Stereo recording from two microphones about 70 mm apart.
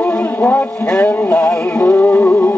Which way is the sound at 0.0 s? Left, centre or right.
Left.